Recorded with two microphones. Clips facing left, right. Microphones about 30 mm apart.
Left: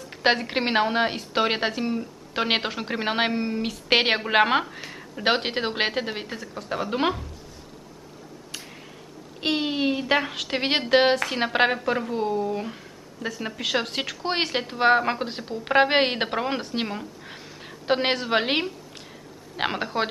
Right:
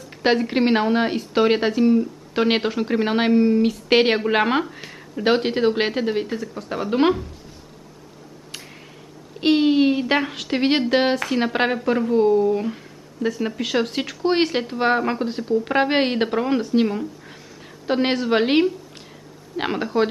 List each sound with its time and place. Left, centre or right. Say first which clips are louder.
0.1 s speech: right 3 dB; centre
5.2 s speech: right 5 dB; centre
9.4 s a woman's voice: right 8 dB; centre
18.1 s speech: right 5 dB; centre